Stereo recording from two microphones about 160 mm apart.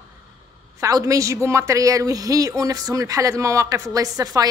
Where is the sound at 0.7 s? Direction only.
20° right (ahead or behind).